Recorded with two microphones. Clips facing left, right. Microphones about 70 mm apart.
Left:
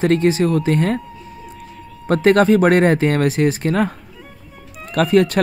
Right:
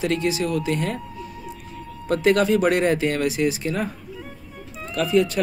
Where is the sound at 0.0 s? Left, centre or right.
Left.